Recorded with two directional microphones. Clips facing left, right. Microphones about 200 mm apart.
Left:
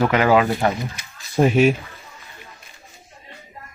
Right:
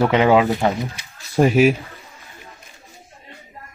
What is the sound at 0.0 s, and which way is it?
Speech, 25° right (ahead or behind).